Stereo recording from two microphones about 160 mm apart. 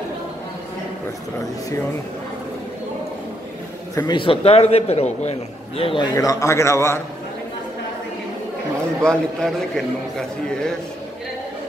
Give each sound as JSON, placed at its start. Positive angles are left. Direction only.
{"t": 3.9, "sound": "a man's voice", "side_deg": 25}
{"t": 6.1, "sound": "a man's voice", "side_deg": 20}
{"t": 9.0, "sound": "a man's voice", "side_deg": 5}